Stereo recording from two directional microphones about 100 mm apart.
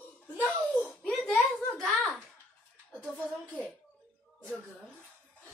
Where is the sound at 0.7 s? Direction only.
5° left (ahead or behind).